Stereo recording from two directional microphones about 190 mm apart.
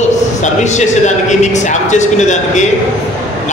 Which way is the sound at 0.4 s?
40° left (ahead or behind).